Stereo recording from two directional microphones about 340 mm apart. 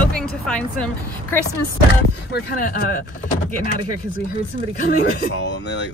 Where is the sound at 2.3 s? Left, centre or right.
Left.